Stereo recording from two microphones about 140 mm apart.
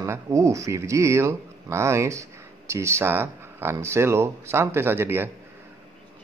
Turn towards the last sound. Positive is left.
turn(degrees=-15)  # may be behind; listen again after turning